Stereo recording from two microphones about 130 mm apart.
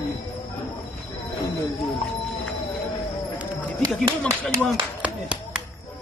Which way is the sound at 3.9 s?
10° left (ahead or behind).